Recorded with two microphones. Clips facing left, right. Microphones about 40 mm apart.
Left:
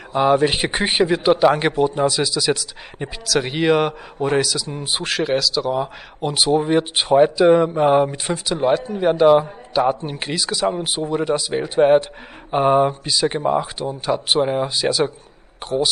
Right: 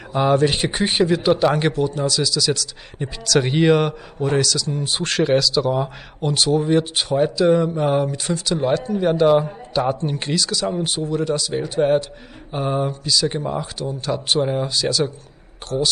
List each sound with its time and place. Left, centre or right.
0.2 s a man's voice: centre
3.3 s speech: centre
6.2 s speech: centre
8.5 s a man's voice: centre